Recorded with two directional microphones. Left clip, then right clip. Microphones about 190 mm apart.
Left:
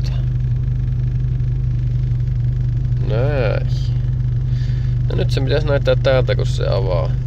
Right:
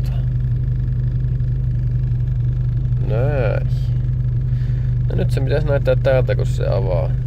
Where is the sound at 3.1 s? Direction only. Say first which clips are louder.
Left 1 dB; 5° right (ahead or behind).